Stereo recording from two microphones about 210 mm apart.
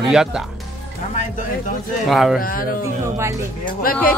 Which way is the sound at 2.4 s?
45° left (ahead or behind).